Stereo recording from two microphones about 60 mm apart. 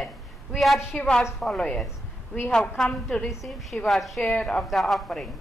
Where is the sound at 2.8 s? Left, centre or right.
Centre.